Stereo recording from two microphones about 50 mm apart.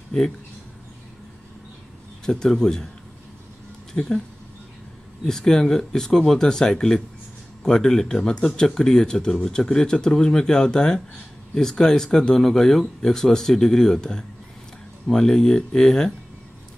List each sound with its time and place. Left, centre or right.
2.2 s speech: centre
3.9 s speech: left
5.2 s speech: centre